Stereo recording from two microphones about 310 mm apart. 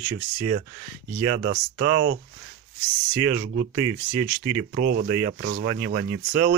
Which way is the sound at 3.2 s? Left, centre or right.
Right.